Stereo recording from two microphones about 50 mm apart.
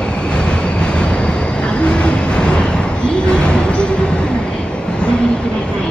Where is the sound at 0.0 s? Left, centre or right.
Centre.